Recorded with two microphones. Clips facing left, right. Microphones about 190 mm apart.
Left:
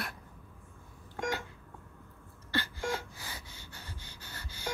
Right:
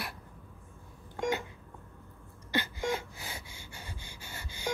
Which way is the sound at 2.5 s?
15° right (ahead or behind).